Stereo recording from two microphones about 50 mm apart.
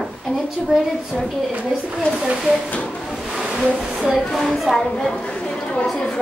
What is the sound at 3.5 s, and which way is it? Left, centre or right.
A woman's voice, centre.